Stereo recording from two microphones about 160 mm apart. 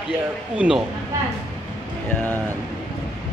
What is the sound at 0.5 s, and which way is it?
Speech, 5° right (ahead or behind).